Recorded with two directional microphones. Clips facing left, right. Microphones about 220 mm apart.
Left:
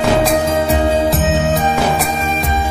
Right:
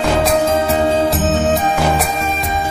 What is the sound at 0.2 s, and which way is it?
Music, centre (ahead or behind).